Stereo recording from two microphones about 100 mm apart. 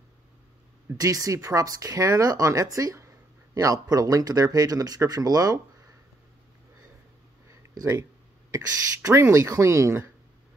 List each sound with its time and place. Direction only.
0.9 s speech: 35° right (ahead or behind)
7.4 s a sound: 35° right (ahead or behind)
8.5 s speech: 30° right (ahead or behind)